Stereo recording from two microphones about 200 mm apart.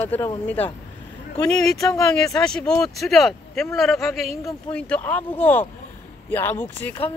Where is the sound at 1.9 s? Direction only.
15° left (ahead or behind).